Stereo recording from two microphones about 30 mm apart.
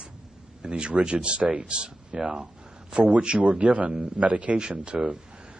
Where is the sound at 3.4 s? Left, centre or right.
Right.